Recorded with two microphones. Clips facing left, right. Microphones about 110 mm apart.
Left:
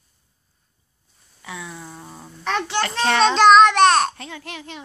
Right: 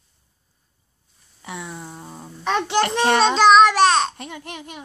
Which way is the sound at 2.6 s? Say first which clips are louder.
Right 4 dB; 20° right (ahead or behind).